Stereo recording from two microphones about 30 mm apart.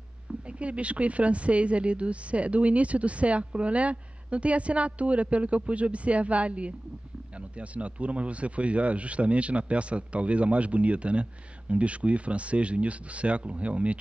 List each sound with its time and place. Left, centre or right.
0.3 s speech: right